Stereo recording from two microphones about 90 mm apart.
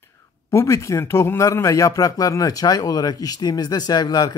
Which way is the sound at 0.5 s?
35° left (ahead or behind).